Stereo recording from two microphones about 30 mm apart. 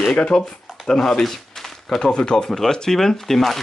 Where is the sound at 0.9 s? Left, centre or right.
Centre.